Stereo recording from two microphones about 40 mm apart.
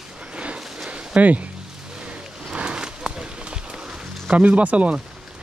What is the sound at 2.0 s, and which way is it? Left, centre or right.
Run, right.